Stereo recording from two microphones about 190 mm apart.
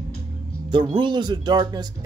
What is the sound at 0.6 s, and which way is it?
Speech, 25° right (ahead or behind).